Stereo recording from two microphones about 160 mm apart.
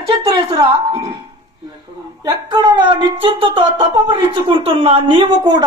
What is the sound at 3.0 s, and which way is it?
A woman's voice, 35° right (ahead or behind).